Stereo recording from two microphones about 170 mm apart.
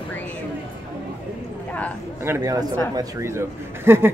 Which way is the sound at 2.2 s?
20° right (ahead or behind).